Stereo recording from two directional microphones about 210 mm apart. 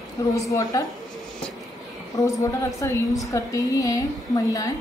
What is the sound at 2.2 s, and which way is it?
A woman's voice, 15° left (ahead or behind).